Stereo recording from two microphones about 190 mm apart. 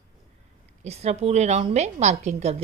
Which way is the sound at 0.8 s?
35° right (ahead or behind).